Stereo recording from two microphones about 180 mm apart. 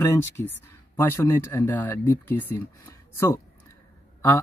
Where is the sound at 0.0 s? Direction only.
15° left (ahead or behind).